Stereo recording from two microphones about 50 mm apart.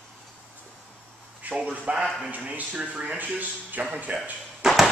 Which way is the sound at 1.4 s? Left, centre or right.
Right.